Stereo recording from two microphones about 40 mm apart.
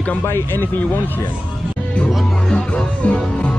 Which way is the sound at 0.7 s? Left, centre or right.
Left.